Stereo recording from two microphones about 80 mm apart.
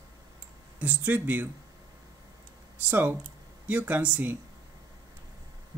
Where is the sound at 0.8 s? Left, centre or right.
Right.